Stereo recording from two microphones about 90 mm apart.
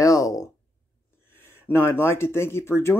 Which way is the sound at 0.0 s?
40° left (ahead or behind).